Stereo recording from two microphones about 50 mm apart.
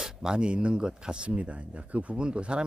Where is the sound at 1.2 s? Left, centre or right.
Right.